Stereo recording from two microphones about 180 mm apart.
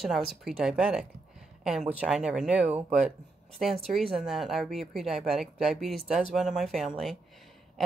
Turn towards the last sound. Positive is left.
turn(degrees=0)  # may be behind; listen again after turning